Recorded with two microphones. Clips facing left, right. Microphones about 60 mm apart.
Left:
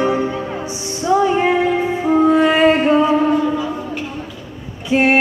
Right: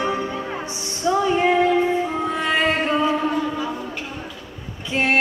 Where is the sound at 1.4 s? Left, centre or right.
Centre.